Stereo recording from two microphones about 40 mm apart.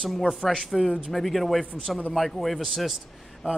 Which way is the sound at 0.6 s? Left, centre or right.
Centre.